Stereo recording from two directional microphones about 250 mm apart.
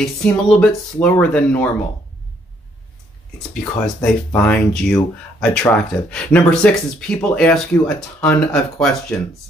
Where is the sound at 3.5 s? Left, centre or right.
Centre.